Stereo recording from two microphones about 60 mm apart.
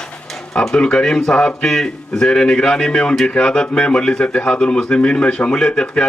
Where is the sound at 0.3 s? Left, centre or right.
Centre.